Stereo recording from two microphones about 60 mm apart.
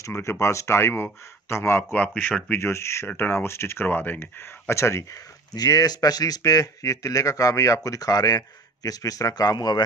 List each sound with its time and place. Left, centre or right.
0.0 s speech: left
2.0 s speech: left
2.6 s speech: left
3.8 s speech: left